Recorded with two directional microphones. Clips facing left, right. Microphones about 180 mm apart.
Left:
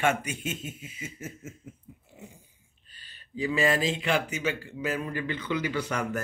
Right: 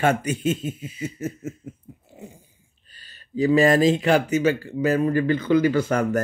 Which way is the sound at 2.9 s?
40° right (ahead or behind).